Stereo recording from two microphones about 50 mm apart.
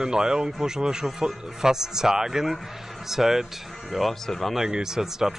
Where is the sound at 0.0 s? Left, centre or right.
Centre.